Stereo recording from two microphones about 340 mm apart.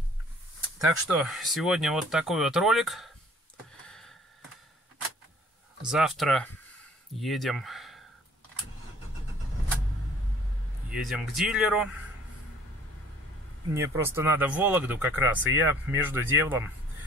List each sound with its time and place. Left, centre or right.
0.7 s speech: centre
3.8 s a sound: centre
5.9 s speech: centre
10.9 s speech: centre
13.7 s speech: centre